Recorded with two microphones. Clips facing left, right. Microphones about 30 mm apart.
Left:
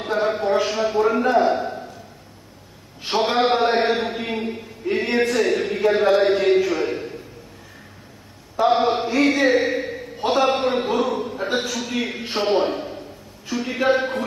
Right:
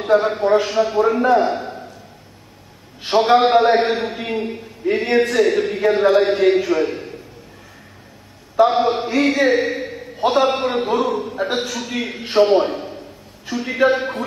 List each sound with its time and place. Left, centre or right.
0.0 s a man's voice: centre
3.1 s a man's voice: centre
8.6 s a man's voice: centre
9.6 s a sound: centre
10.4 s a man's voice: centre
13.5 s a man's voice: right
13.8 s a man's voice: centre